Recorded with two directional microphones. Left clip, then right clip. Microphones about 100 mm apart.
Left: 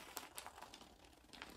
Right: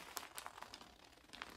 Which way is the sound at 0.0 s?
25° right (ahead or behind).